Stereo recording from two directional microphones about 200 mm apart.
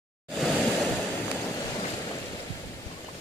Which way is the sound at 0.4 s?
Centre (ahead or behind).